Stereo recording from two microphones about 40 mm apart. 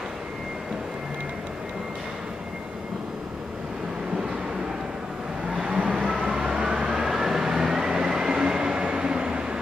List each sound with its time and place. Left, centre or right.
5.5 s vehicle: right